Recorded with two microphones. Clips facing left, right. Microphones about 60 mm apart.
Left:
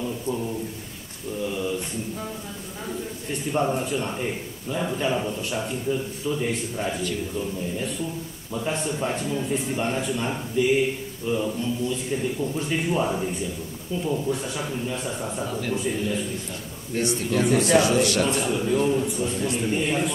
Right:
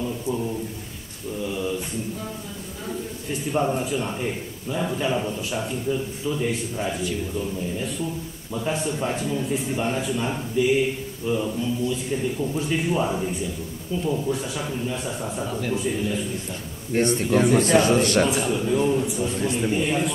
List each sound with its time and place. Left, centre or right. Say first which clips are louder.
0.0 s a sound: right 1 dB; centre
3.3 s a man's voice: right 1 dB; centre
16.9 s a man's voice: right 4 dB; right
18.2 s a man's voice: right 1 dB; centre